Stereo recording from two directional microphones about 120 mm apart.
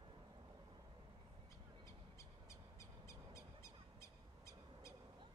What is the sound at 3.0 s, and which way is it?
Owl, 25° left (ahead or behind).